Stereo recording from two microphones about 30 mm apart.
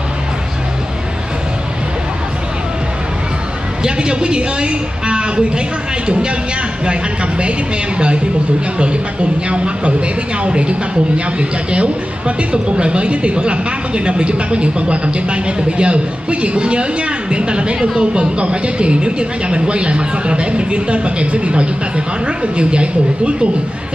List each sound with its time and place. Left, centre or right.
3.8 s a man's voice: right
6.9 s a man's voice: right
8.7 s a man's voice: right
17.9 s speech: right
18.4 s a man's voice: right